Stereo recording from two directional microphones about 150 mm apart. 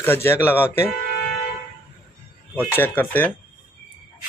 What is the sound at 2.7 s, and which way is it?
Speech, 15° left (ahead or behind).